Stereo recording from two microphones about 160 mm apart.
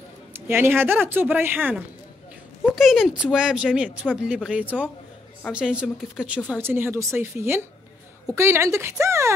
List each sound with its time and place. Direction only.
0.3 s speech: 15° right (ahead or behind)
2.7 s speech: centre (ahead or behind); by 9.3 s 15° right (ahead or behind)